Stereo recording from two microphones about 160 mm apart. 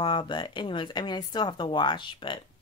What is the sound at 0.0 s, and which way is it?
Speech, 30° left (ahead or behind).